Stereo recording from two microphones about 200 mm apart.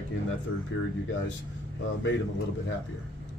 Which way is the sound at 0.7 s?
60° left (ahead or behind).